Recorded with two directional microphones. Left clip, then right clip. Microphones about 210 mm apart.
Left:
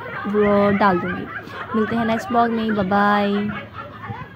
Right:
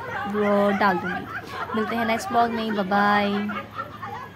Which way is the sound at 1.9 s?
5° left (ahead or behind).